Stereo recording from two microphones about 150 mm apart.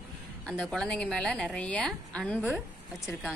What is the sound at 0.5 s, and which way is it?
A woman's voice, 5° left (ahead or behind).